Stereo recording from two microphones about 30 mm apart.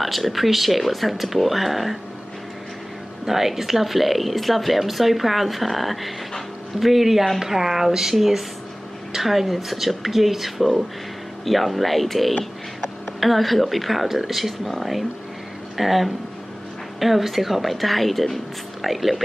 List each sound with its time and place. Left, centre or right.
0.0 s speech: centre
3.3 s speech: centre